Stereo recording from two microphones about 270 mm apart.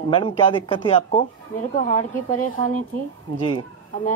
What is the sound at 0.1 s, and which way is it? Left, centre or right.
A man's voice, centre.